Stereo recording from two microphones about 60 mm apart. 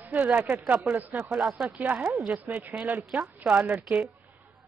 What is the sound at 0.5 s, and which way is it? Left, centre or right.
Speech, centre.